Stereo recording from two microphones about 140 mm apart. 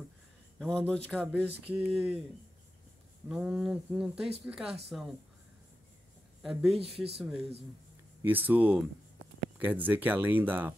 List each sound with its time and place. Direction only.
0.6 s speech: 5° left (ahead or behind)
1.7 s speech: 10° right (ahead or behind)
3.3 s speech: 10° right (ahead or behind)
6.4 s speech: centre (ahead or behind)